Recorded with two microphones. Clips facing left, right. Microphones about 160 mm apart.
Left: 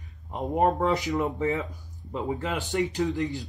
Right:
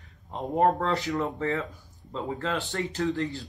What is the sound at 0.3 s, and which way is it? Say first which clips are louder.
Speech: even; 15° left (ahead or behind).